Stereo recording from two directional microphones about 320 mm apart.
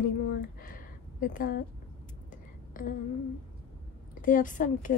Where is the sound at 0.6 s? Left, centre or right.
Left.